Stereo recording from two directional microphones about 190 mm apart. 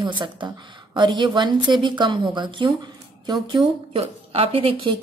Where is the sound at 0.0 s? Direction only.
25° right (ahead or behind).